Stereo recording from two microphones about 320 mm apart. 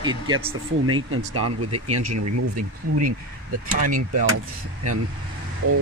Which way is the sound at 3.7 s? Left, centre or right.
Right.